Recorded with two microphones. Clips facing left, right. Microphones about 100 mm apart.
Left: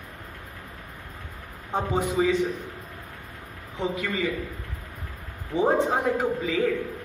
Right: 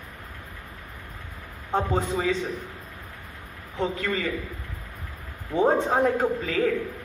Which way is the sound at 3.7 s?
15° left (ahead or behind).